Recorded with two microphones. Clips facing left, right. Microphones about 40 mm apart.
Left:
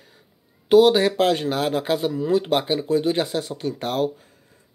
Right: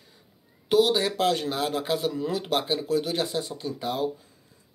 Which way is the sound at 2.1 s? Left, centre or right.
Centre.